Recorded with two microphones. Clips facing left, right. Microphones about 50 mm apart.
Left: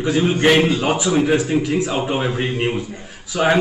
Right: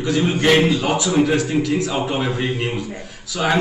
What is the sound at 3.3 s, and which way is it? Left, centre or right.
Speech, left.